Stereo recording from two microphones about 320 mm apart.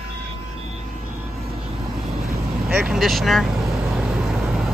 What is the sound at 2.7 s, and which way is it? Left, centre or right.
Vehicle, centre.